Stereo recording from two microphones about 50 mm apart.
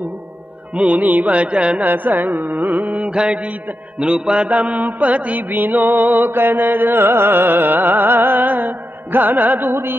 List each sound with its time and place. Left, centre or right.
0.7 s music: right
1.9 s mantra: right